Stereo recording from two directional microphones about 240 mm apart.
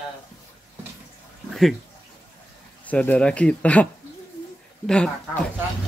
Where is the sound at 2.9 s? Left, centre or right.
Centre.